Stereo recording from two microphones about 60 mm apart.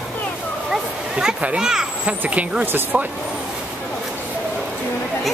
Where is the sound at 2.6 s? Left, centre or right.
Right.